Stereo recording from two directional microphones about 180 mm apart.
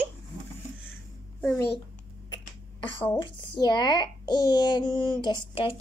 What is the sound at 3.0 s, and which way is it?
A child's voice, 25° left (ahead or behind).